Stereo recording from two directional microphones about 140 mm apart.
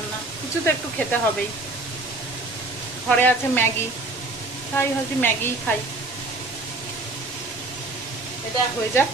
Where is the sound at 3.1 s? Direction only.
15° left (ahead or behind).